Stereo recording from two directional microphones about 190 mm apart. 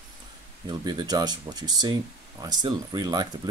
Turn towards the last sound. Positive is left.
turn(degrees=-20)  # may be behind; listen again after turning